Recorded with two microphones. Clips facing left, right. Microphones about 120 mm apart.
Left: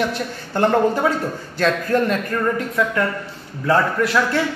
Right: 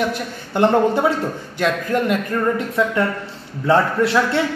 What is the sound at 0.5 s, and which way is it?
A man's voice, 20° right (ahead or behind).